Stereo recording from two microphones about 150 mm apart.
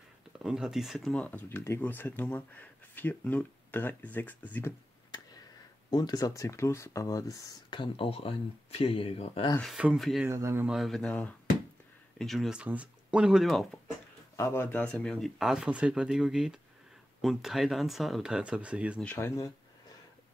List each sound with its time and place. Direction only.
0.4 s speech: 5° right (ahead or behind); by 4.7 s 10° left (ahead or behind)
5.9 s speech: 25° left (ahead or behind)
9.6 s speech: 5° right (ahead or behind)
10.2 s speech: 15° right (ahead or behind)
10.7 s speech: centre (ahead or behind)
14.3 s speech: 20° left (ahead or behind); by 18.9 s 10° right (ahead or behind)
19.1 s speech: 20° left (ahead or behind)